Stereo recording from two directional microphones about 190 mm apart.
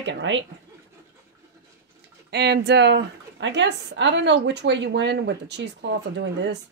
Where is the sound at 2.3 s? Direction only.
60° right (ahead or behind).